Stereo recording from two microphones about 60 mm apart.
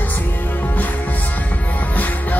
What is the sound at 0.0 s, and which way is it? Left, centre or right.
Music, left.